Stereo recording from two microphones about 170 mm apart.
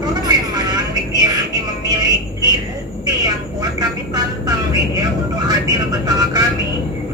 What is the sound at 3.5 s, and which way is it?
Vehicle, 25° right (ahead or behind).